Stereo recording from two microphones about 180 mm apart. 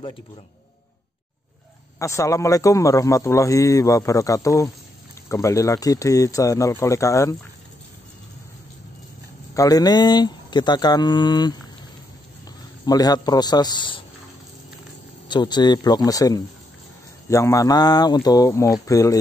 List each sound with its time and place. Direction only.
2.0 s speech: 15° left (ahead or behind)
9.5 s speech: 20° left (ahead or behind)
12.8 s speech: 20° left (ahead or behind)
15.2 s speech: 25° left (ahead or behind)